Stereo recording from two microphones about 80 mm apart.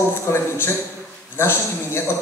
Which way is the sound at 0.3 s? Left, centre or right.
Left.